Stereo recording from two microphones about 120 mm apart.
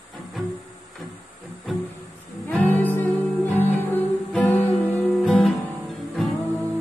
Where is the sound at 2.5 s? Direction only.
15° left (ahead or behind).